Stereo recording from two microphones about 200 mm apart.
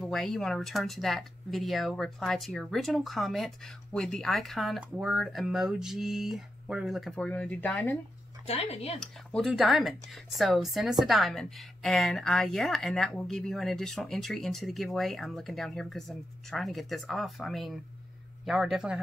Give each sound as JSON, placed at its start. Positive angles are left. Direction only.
{"t": 0.0, "sound": "speech", "side_deg": 0}
{"t": 8.5, "sound": "speech", "side_deg": 30}
{"t": 9.0, "sound": "speech", "side_deg": 0}